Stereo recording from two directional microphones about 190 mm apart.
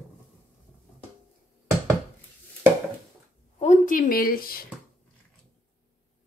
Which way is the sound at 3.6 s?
40° left (ahead or behind).